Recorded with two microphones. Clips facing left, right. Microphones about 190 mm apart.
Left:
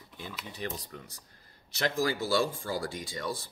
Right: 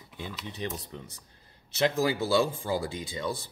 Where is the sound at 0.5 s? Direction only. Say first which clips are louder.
Right 1 dB; 25° right (ahead or behind).